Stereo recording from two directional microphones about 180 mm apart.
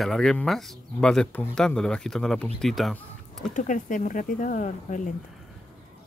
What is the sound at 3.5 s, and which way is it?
Speech, 45° left (ahead or behind).